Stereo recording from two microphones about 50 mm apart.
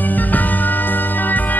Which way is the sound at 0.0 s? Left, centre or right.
Left.